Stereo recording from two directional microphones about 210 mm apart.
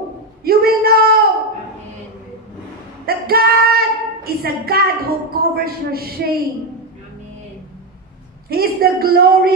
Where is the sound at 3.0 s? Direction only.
45° right (ahead or behind).